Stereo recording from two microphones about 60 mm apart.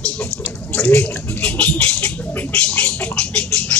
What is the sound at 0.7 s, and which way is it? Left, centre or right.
Rodents, left.